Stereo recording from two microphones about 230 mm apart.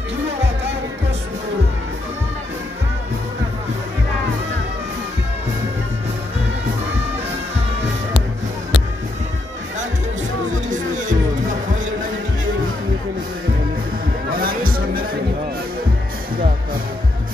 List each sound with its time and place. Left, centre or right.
14.3 s music: right